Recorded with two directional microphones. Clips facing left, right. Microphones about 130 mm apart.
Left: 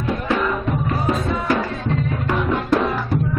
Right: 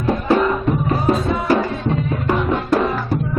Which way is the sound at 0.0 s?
30° right (ahead or behind).